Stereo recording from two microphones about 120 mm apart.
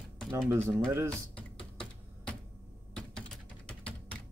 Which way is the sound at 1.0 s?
10° left (ahead or behind).